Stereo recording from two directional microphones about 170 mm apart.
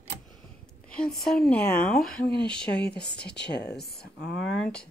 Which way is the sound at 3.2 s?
75° left (ahead or behind).